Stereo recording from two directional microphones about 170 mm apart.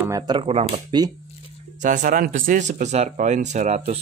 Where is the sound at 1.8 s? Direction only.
50° right (ahead or behind).